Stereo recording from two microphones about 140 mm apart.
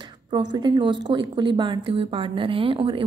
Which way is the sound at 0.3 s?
30° right (ahead or behind).